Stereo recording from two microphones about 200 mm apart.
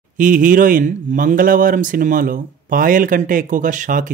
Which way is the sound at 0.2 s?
40° right (ahead or behind).